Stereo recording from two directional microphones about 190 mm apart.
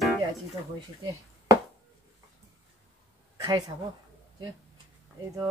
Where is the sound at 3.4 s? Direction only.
20° right (ahead or behind).